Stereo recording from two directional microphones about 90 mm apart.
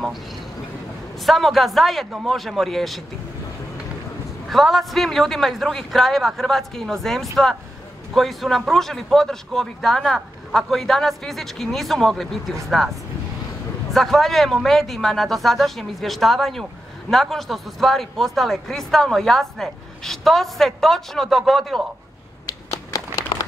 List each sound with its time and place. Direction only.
1.2 s a man's voice: centre (ahead or behind)
4.5 s a man's voice: centre (ahead or behind)
13.9 s a man's voice: centre (ahead or behind)
22.5 s a sound: 40° left (ahead or behind)